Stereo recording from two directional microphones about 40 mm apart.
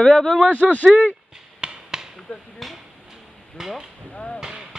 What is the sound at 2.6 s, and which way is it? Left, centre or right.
Hammer, centre.